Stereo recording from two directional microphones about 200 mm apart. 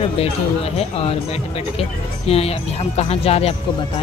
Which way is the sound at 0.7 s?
30° left (ahead or behind).